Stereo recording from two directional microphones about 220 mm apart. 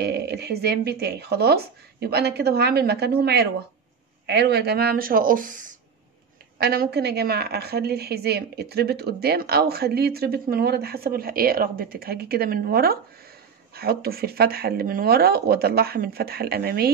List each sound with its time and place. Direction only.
0.0 s a woman's voice: 50° right (ahead or behind)